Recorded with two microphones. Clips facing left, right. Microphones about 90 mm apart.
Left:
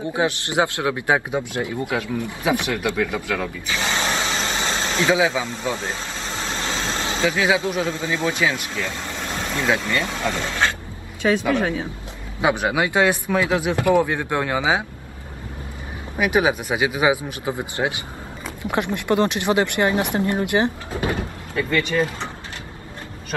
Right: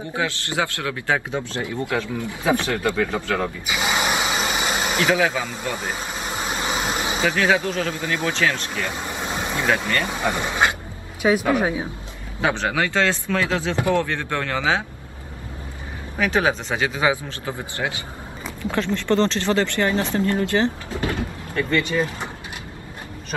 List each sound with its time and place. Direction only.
0.1 s a man's voice: 20° left (ahead or behind)
3.1 s speech: 25° right (ahead or behind)
3.6 s a sound: 15° right (ahead or behind)
5.1 s a man's voice: 15° left (ahead or behind)
5.8 s vehicle: 15° right (ahead or behind)
7.3 s a man's voice: 15° left (ahead or behind)
8.7 s vehicle: 20° right (ahead or behind)
10.0 s speech: 15° right (ahead or behind)
12.4 s a man's voice: 15° left (ahead or behind)
16.2 s a man's voice: 15° left (ahead or behind)
21.5 s speech: centre (ahead or behind)